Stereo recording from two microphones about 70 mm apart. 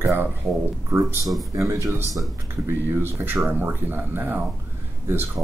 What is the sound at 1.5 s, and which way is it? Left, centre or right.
Speech, right.